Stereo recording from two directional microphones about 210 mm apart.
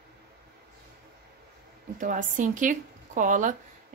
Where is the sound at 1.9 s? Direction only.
40° right (ahead or behind).